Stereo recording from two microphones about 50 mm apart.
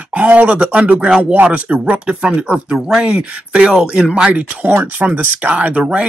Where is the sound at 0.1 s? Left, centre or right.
Right.